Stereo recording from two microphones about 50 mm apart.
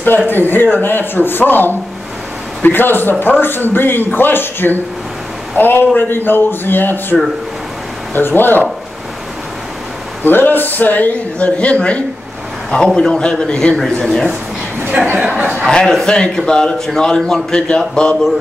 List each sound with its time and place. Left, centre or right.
0.3 s speech: left
10.2 s a man's voice: left; by 14.2 s centre
15.0 s speech: right
15.7 s a man's voice: centre